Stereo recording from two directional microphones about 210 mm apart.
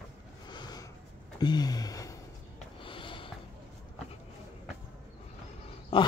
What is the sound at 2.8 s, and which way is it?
Snort, 25° left (ahead or behind).